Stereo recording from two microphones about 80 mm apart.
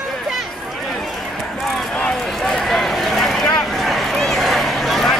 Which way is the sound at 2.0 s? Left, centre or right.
Centre.